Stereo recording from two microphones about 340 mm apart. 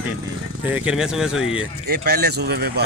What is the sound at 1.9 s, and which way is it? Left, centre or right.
Speech, right.